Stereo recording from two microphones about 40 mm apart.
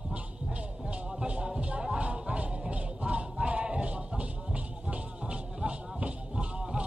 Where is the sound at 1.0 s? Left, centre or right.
Right.